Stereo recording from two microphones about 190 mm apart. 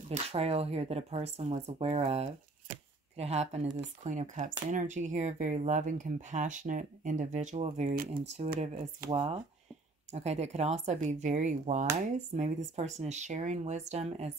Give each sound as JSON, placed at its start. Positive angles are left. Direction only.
{"t": 0.1, "sound": "speech", "side_deg": -30}
{"t": 8.1, "sound": "speech", "side_deg": -35}